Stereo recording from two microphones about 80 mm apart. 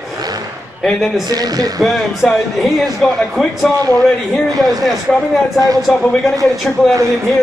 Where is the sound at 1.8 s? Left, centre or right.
Centre.